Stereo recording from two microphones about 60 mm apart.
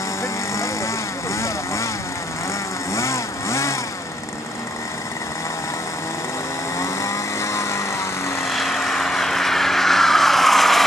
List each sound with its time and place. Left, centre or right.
1.3 s vehicle: left
2.9 s vehicle: left
6.8 s vehicle: left
8.5 s vehicle: centre